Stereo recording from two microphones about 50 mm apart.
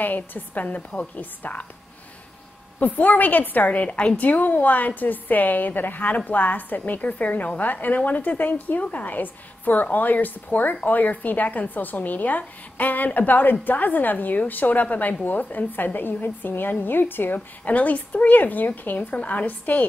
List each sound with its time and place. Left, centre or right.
0.0 s a woman's voice: left
2.8 s a woman's voice: left
17.6 s a woman's voice: left